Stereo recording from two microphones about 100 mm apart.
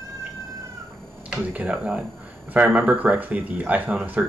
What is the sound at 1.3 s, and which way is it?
Speech, 15° right (ahead or behind).